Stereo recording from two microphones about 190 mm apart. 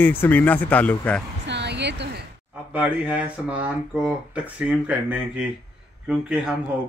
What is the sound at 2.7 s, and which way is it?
A woman's voice, 5° right (ahead or behind).